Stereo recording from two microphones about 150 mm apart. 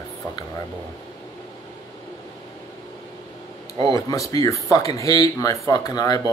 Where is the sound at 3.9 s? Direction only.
20° left (ahead or behind).